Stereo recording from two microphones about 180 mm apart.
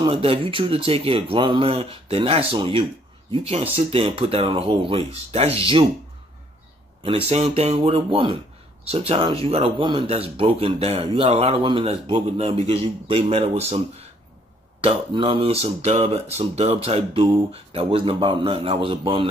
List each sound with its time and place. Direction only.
0.0 s speech: 30° right (ahead or behind)
7.0 s speech: 30° right (ahead or behind)
14.8 s a man's voice: 30° right (ahead or behind)